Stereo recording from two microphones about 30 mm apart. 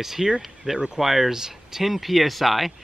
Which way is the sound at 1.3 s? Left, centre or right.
Centre.